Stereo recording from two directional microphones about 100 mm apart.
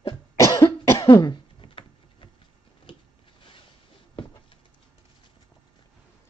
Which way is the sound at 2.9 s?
55° left (ahead or behind).